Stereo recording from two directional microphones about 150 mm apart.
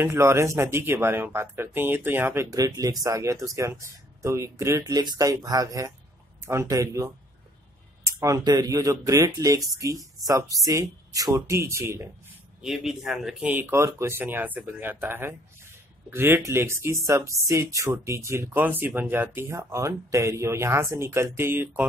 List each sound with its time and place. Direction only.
0.0 s speech: 20° right (ahead or behind)
8.2 s speech: 25° right (ahead or behind)
12.6 s speech: 5° right (ahead or behind)